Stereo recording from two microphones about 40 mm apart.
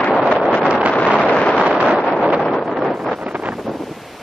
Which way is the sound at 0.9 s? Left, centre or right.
Left.